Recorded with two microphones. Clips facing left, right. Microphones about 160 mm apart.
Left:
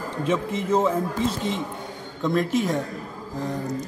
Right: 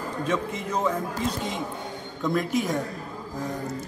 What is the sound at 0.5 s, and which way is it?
Speech, 25° left (ahead or behind).